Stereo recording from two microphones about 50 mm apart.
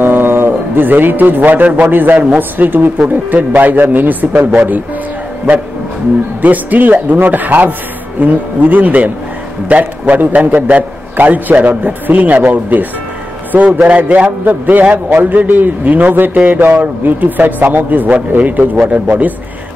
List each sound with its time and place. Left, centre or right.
0.0 s a sound: right
0.5 s a man's voice: right
6.4 s a man's voice: right